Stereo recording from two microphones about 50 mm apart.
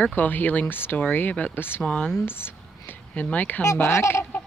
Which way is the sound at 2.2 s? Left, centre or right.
Left.